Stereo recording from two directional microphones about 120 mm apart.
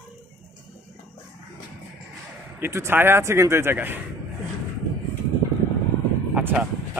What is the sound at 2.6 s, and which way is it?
A man's voice, 20° right (ahead or behind).